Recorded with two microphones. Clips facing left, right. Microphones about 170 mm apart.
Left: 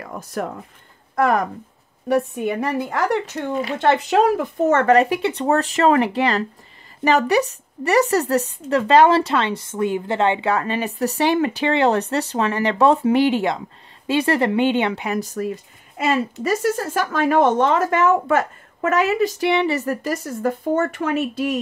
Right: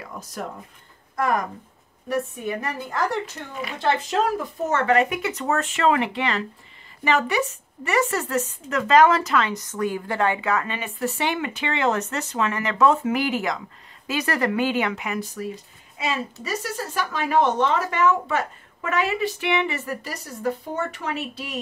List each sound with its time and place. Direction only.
0.0 s speech: 55° left (ahead or behind)
2.0 s a woman's voice: 70° left (ahead or behind); by 4.9 s 55° left (ahead or behind)
4.9 s a woman's voice: 30° left (ahead or behind); by 21.5 s 50° left (ahead or behind)